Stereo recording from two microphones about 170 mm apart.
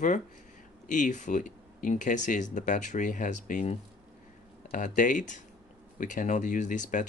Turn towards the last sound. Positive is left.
turn(degrees=50)  # may be behind; listen again after turning